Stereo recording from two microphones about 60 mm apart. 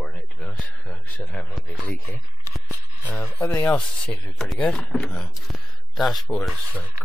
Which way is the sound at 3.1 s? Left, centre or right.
Left.